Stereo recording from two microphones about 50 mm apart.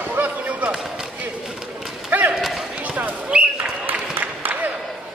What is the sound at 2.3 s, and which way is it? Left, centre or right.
Basketball bounce, centre.